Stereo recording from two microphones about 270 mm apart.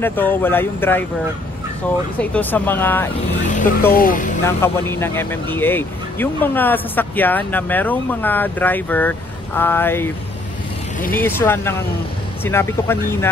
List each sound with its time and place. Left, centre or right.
0.0 s speech: centre
2.1 s speech: centre
3.9 s speech: left
4.5 s speech: centre